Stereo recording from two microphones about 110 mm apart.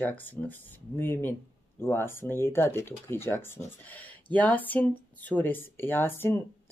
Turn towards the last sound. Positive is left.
turn(degrees=25)  # may be behind; listen again after turning